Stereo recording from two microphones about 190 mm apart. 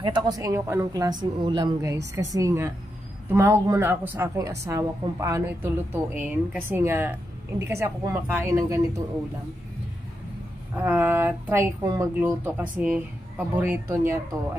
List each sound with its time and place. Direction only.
0.0 s a woman's voice: 20° right (ahead or behind)
10.8 s speech: 10° right (ahead or behind)